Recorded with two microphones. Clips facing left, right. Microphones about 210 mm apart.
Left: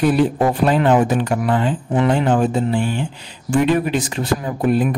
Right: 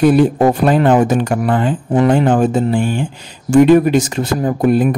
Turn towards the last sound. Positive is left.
turn(degrees=-45)  # may be behind; listen again after turning